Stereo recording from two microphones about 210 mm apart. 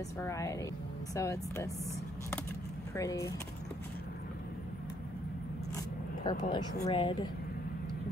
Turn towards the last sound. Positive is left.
turn(degrees=20)  # may be behind; listen again after turning